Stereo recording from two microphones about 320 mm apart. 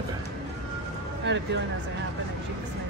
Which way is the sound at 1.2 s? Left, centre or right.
Right.